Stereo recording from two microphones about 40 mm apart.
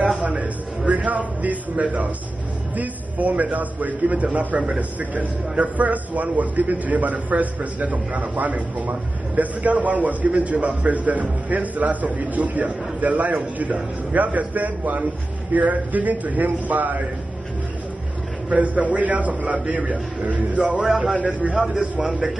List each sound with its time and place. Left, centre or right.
0.4 s a sound: right
2.7 s speech: right
18.5 s speech: right
20.8 s a man's voice: centre
21.2 s speech: right